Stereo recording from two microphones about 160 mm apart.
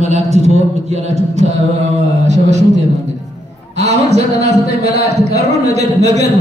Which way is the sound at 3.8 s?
45° right (ahead or behind).